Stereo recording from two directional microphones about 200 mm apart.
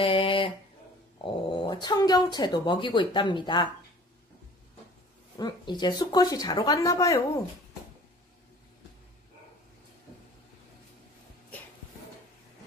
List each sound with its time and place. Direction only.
0.0 s a sound: 25° left (ahead or behind)
1.2 s speech: 20° left (ahead or behind)
5.4 s speech: 20° left (ahead or behind)